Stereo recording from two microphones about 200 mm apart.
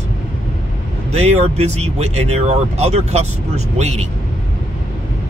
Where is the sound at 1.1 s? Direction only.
30° right (ahead or behind).